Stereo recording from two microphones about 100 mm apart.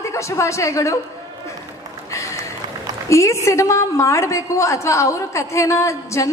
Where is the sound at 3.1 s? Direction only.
30° left (ahead or behind).